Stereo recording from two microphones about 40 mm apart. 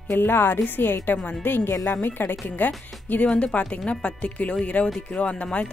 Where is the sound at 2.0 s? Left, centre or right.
Left.